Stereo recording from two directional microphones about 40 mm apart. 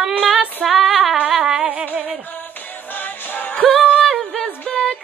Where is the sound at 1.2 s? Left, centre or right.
Centre.